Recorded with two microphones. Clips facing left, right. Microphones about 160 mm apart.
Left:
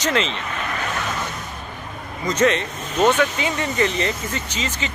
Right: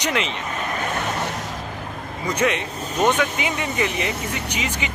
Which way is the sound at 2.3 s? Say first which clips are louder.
Left 3 dB; 10° right (ahead or behind).